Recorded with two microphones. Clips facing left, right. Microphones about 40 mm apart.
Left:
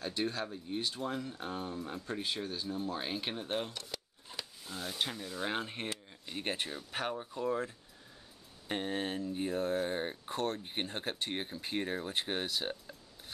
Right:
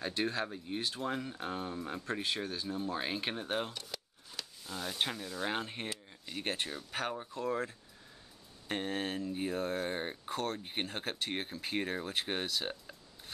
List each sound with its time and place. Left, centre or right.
0.0 s speech: centre
4.3 s a sound: centre
4.6 s speech: centre
4.9 s speech: centre
5.2 s speech: centre